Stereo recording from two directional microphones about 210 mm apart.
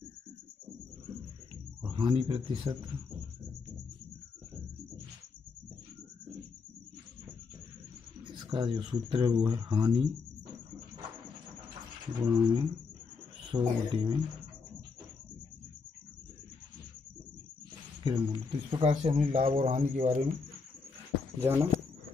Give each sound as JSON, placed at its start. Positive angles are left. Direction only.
{"t": 1.9, "sound": "speech", "side_deg": -25}
{"t": 8.3, "sound": "speech", "side_deg": -20}
{"t": 12.2, "sound": "speech", "side_deg": -20}
{"t": 18.0, "sound": "speech", "side_deg": -20}
{"t": 21.4, "sound": "speech", "side_deg": -10}